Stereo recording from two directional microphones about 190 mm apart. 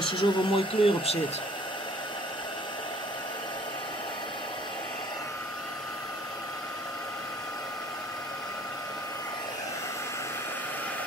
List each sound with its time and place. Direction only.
0.0 s speech: 25° left (ahead or behind)